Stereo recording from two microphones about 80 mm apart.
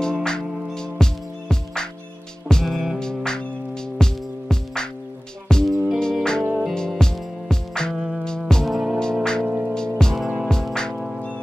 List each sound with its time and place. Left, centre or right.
0.0 s music: centre
9.0 s music: centre
9.5 s music: centre
9.8 s music: centre